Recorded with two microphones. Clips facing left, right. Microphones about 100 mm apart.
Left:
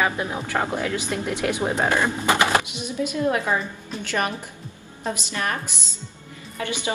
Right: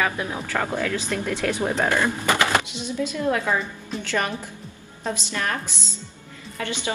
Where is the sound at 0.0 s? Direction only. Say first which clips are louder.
Left 1 dB; 20° left (ahead or behind).